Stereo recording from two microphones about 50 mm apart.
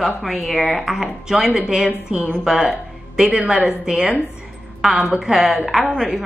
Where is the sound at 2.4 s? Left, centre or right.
Centre.